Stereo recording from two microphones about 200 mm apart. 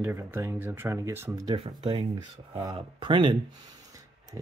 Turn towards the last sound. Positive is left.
turn(degrees=-15)  # may be behind; listen again after turning